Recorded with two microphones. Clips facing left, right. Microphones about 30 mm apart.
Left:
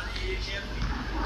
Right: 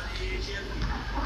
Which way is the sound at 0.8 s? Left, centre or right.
Centre.